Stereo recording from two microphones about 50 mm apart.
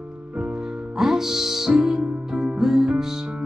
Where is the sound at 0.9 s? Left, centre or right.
Centre.